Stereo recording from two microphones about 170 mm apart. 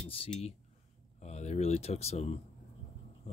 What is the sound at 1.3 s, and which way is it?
Speech, 40° left (ahead or behind).